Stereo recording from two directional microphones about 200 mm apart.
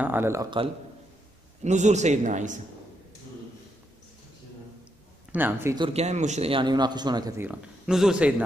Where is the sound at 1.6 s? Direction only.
35° right (ahead or behind).